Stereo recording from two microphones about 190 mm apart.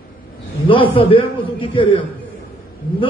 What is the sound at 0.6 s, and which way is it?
A man's voice, 25° left (ahead or behind).